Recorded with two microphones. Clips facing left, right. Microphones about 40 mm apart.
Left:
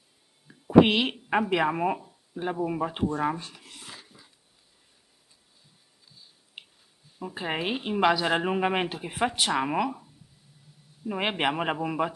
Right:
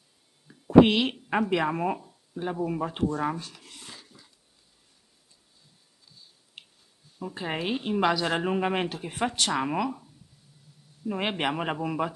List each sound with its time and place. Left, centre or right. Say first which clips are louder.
0.5 s speech: right 1 dB; centre
6.6 s a sound: left 2 dB; centre
7.2 s a woman's voice: left 1 dB; centre
11.1 s a woman's voice: left 1 dB; centre